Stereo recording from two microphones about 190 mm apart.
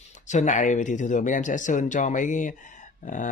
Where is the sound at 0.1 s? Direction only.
40° left (ahead or behind).